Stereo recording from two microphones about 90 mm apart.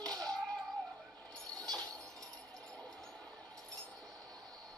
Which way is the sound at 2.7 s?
10° left (ahead or behind).